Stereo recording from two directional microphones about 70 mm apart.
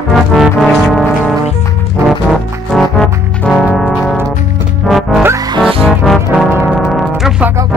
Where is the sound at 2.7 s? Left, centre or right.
Centre.